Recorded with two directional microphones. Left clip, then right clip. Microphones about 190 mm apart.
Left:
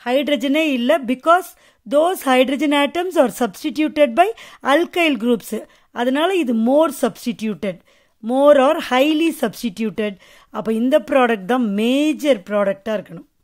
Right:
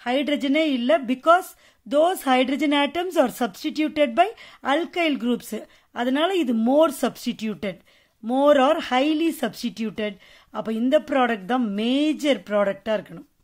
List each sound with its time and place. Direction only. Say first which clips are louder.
0.0 s a woman's voice: left 5 dB; 25° left (ahead or behind)